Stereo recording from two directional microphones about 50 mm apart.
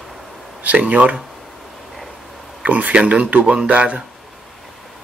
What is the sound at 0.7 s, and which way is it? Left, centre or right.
Speech, right.